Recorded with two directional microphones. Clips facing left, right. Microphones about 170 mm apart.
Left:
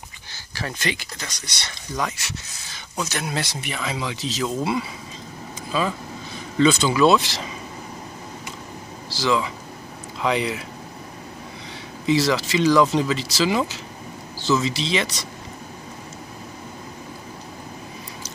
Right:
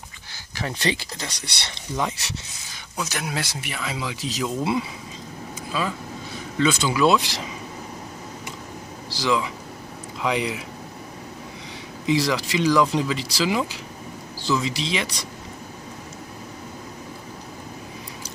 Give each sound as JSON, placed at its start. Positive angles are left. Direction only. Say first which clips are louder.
{"t": 0.8, "sound": "speech", "louder": "right 5 dB", "side_deg": -30}
{"t": 3.0, "sound": "speech", "louder": "left 2 dB", "side_deg": -5}
{"t": 5.7, "sound": "speech", "louder": "left 3 dB", "side_deg": -5}
{"t": 9.1, "sound": "speech", "louder": "left 1 dB", "side_deg": -15}
{"t": 12.1, "sound": "speech", "louder": "left 2 dB", "side_deg": -15}